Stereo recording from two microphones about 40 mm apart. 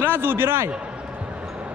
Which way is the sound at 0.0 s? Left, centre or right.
Right.